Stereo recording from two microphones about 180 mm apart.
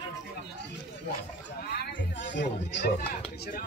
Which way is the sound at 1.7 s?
70° left (ahead or behind).